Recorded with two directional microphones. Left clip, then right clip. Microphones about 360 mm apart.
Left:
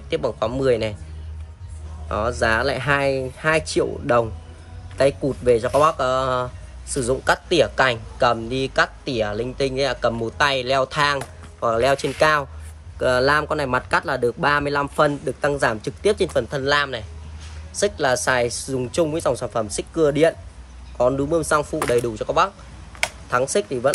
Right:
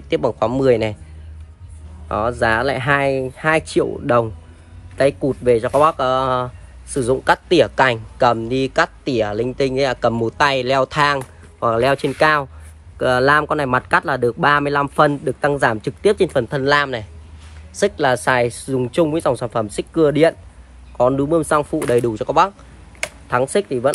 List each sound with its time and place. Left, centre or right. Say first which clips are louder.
0.1 s speech: right 5 dB; centre
2.0 s speech: right 3 dB; centre
5.4 s speech: right 2 dB; centre